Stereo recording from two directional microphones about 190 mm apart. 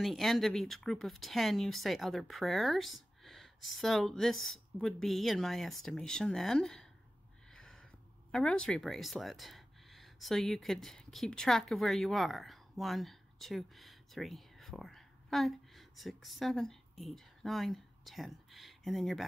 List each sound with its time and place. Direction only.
0.0 s speech: centre (ahead or behind)
7.5 s a sound: 5° left (ahead or behind)
8.3 s speech: 5° left (ahead or behind)